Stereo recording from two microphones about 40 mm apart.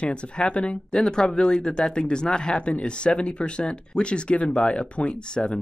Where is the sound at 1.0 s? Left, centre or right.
Centre.